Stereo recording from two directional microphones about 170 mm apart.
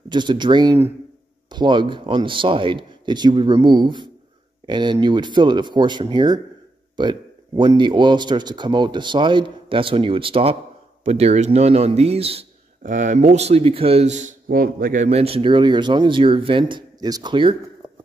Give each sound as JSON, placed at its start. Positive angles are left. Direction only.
{"t": 0.1, "sound": "a man's voice", "side_deg": -25}
{"t": 12.8, "sound": "a man's voice", "side_deg": -50}